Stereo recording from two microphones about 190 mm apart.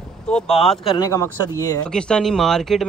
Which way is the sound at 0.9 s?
20° left (ahead or behind).